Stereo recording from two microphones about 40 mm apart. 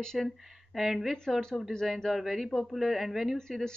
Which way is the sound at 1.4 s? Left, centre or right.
Centre.